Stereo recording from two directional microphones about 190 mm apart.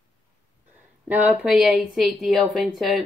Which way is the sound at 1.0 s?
5° right (ahead or behind).